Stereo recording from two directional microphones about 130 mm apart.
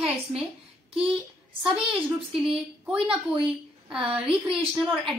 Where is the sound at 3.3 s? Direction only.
5° right (ahead or behind).